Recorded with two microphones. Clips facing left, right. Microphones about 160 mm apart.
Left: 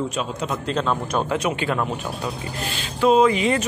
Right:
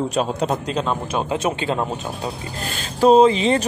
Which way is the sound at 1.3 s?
25° right (ahead or behind).